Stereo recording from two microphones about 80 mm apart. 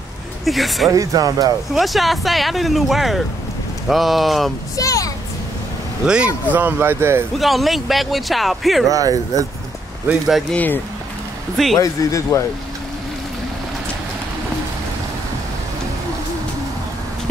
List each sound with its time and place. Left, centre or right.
0.5 s speech: centre
0.8 s speech: right
1.7 s speech: centre
4.7 s a sound: left
6.0 s speech: centre; by 7.2 s right
7.3 s speech: centre
8.8 s speech: right
10.5 s speech: left
11.5 s speech: centre
11.8 s speech: left